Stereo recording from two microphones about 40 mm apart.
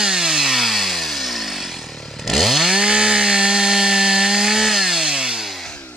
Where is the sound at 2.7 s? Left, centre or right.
Centre.